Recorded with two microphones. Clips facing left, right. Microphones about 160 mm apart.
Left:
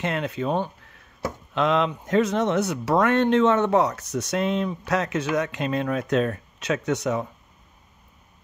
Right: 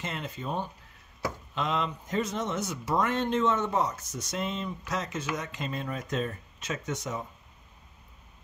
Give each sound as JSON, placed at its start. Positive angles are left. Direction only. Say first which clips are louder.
{"t": 0.0, "sound": "speech", "louder": "left 10 dB", "side_deg": 75}